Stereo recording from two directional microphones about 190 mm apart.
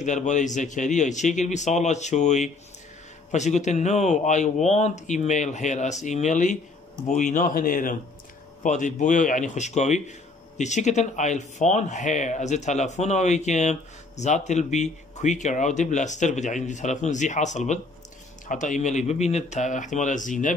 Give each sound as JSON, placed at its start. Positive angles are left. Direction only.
{"t": 0.0, "sound": "a man's voice", "side_deg": 40}